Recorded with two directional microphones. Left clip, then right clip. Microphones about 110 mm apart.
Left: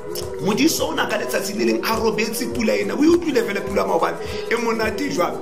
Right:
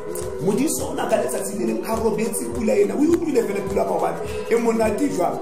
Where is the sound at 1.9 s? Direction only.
35° right (ahead or behind).